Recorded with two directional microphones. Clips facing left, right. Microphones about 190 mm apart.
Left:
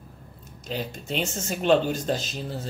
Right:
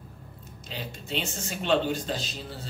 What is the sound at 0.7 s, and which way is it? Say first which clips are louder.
Speech: left 6 dB; 45° left (ahead or behind).